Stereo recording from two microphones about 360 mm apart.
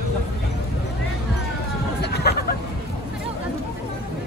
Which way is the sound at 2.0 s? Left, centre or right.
Left.